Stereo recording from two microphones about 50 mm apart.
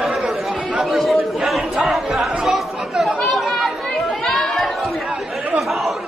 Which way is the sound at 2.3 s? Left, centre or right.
Centre.